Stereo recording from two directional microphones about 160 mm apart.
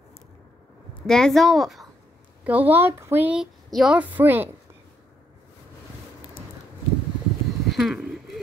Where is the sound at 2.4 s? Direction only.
10° right (ahead or behind).